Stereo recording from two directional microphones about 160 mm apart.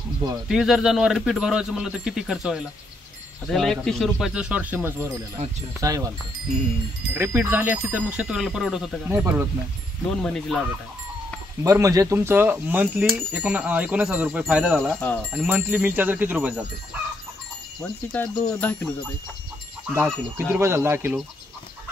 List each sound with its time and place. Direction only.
0.5 s speech: 5° right (ahead or behind); by 6.0 s 20° right (ahead or behind)
7.2 s speech: 15° right (ahead or behind)
10.1 s speech: 5° left (ahead or behind)
11.6 s speech: 20° right (ahead or behind)
18.1 s speech: 10° left (ahead or behind)
19.9 s speech: 15° right (ahead or behind)